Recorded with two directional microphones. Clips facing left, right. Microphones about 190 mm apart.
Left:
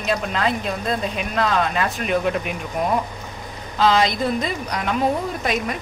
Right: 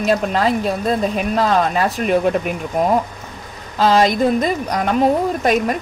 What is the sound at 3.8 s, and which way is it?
Speech, 45° right (ahead or behind).